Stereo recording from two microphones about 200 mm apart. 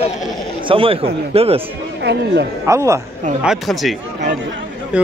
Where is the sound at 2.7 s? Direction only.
15° right (ahead or behind).